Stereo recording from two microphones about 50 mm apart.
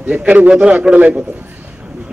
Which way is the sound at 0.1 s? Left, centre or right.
Right.